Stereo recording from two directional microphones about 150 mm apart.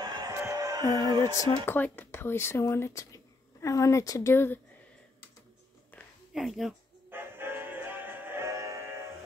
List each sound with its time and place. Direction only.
0.0 s a sound: 25° right (ahead or behind)
1.3 s speech: 20° left (ahead or behind)
6.3 s speech: centre (ahead or behind)
7.1 s music: 15° right (ahead or behind)